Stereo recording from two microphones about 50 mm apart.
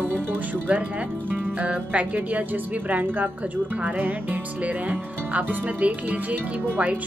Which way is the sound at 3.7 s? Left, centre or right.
Right.